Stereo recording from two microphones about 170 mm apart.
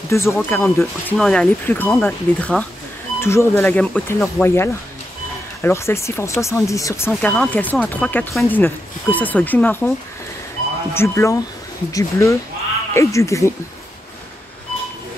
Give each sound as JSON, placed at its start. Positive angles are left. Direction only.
{"t": 0.1, "sound": "speech", "side_deg": 15}
{"t": 1.1, "sound": "speech", "side_deg": 0}
{"t": 3.7, "sound": "speech", "side_deg": 0}
{"t": 4.1, "sound": "speech", "side_deg": 15}
{"t": 7.1, "sound": "speech", "side_deg": 5}
{"t": 10.9, "sound": "speech", "side_deg": 15}